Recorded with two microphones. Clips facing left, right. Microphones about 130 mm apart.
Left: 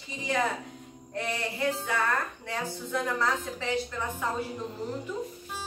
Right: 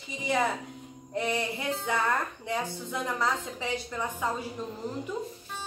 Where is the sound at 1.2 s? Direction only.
15° right (ahead or behind).